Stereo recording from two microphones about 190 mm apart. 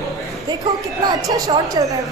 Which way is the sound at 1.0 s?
20° right (ahead or behind).